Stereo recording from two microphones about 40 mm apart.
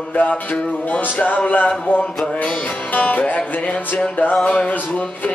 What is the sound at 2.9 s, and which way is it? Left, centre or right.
Music, left.